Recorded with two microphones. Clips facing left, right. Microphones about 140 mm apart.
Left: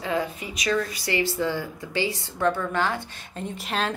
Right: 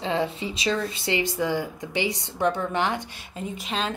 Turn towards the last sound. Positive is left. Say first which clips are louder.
# left 1 dB
turn(degrees=0)  # may be behind; listen again after turning